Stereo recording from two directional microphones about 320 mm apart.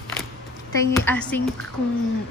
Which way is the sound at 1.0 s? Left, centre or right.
Centre.